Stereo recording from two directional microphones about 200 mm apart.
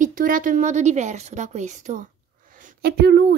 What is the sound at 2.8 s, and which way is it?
Speech, 55° right (ahead or behind).